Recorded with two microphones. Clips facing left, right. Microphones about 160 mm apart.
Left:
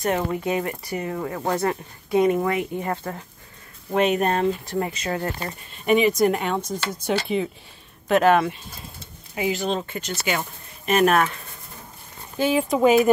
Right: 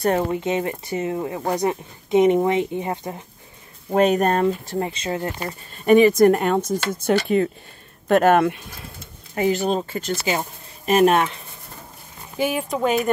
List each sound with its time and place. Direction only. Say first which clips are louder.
0.0 s speech: right 3 dB; 35° right (ahead or behind)
0.4 s speech: right 2 dB; 25° right (ahead or behind)
3.9 s speech: right 3 dB; 40° right (ahead or behind)
4.6 s speech: right 1 dB; 25° right (ahead or behind)
5.9 s speech: right 5 dB; 45° right (ahead or behind)
9.3 s speech: right 4 dB; 45° right (ahead or behind); by 11.2 s 30° right (ahead or behind)
12.4 s speech: left 2 dB; 5° right (ahead or behind)
12.7 s speech: left 6 dB; 5° left (ahead or behind)